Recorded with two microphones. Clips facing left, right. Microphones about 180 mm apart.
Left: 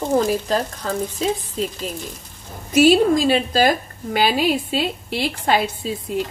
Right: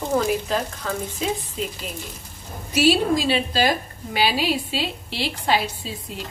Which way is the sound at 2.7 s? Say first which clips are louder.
Left 5 dB; 50° left (ahead or behind).